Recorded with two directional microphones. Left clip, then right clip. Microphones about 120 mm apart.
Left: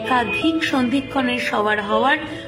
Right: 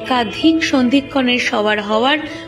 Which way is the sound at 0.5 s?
50° right (ahead or behind).